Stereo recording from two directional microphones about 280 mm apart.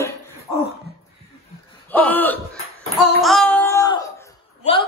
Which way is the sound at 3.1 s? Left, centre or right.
Centre.